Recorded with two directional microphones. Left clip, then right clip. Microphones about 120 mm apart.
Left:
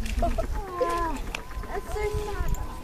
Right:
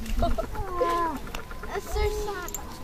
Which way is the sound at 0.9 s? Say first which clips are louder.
Right 1 dB; 5° left (ahead or behind).